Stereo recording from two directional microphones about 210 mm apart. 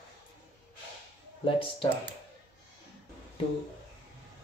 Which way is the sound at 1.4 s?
25° left (ahead or behind).